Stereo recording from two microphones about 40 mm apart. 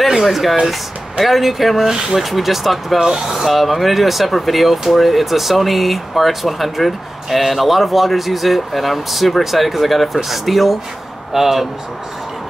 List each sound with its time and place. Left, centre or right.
0.2 s speech: centre
1.9 s speech: centre
2.1 s speech: centre
3.0 s speech: centre